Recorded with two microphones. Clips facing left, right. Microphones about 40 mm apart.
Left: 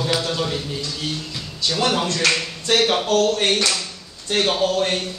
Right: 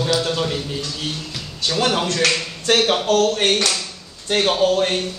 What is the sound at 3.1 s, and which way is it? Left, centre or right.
Speech, right.